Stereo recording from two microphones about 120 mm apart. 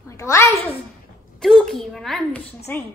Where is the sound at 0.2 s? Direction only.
25° left (ahead or behind).